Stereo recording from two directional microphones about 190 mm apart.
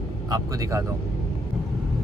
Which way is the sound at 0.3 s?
15° right (ahead or behind).